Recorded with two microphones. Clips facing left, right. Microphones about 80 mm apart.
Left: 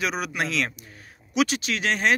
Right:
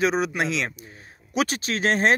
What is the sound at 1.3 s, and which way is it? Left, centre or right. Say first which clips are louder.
Speech: left 1 dB; right.